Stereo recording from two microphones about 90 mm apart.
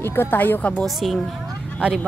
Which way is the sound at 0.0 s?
25° left (ahead or behind).